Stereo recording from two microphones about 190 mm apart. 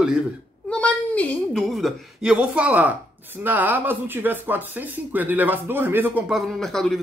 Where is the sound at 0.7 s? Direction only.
5° left (ahead or behind).